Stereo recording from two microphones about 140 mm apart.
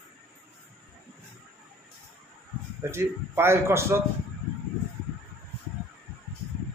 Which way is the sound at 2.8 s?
15° right (ahead or behind).